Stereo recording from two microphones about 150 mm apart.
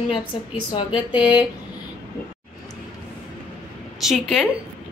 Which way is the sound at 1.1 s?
30° left (ahead or behind).